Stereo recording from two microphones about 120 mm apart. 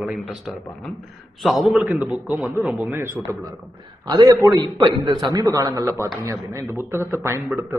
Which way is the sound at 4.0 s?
35° right (ahead or behind).